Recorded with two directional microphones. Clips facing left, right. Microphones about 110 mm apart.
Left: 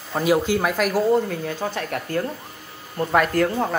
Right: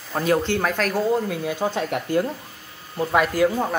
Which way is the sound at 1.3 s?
10° right (ahead or behind).